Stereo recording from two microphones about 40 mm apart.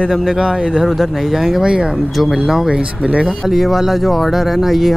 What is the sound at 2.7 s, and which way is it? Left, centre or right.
Speech, right.